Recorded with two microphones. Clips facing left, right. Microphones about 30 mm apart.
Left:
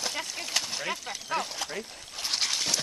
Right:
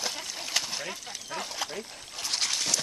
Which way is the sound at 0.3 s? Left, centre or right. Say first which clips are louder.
Even; centre.